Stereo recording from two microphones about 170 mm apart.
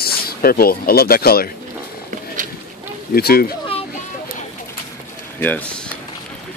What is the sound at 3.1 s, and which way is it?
Speech, 60° left (ahead or behind).